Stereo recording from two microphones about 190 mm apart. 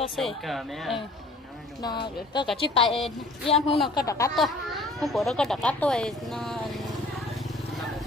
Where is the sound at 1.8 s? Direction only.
25° left (ahead or behind).